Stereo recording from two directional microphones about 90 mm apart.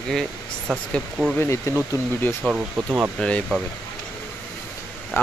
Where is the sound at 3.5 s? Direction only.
10° left (ahead or behind).